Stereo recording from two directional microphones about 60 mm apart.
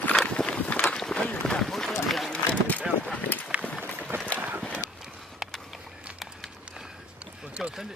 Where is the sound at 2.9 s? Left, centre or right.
Centre.